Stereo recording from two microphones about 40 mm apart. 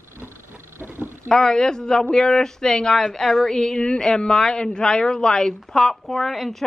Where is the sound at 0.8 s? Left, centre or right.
Right.